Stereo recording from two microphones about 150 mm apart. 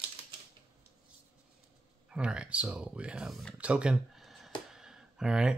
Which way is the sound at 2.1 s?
5° right (ahead or behind).